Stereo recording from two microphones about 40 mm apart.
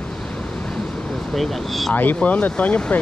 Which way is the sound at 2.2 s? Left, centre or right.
Left.